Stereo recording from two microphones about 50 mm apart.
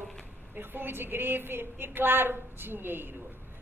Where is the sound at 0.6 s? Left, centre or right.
Right.